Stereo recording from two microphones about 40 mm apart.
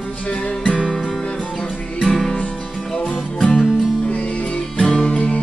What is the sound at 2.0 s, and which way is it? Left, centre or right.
Music, centre.